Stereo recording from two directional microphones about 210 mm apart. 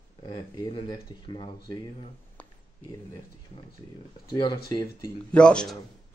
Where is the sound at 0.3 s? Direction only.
20° left (ahead or behind).